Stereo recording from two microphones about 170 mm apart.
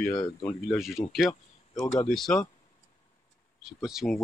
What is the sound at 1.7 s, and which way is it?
Speech, 20° left (ahead or behind).